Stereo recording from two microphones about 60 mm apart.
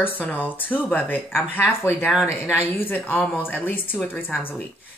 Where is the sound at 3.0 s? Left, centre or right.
Left.